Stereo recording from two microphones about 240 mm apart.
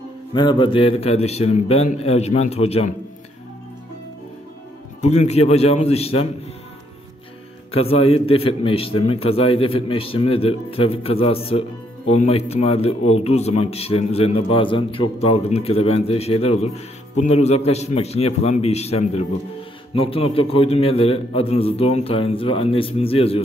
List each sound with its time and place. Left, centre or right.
0.3 s a man's voice: centre
5.0 s a man's voice: left
7.7 s a man's voice: left